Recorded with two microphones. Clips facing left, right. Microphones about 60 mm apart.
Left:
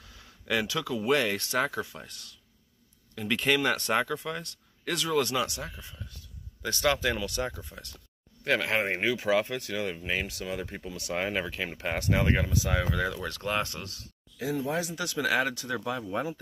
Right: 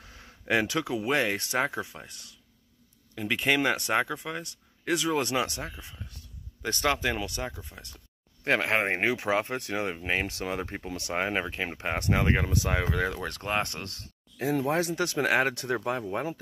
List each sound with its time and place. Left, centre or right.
0.0 s a sound: right
0.9 s speech: right
5.1 s speech: right
7.4 s speech: centre
8.5 s speech: right
11.1 s speech: right
13.7 s speech: right